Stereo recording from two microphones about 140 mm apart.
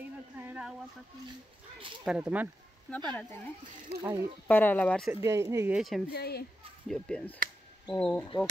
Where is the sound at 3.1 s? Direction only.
10° left (ahead or behind).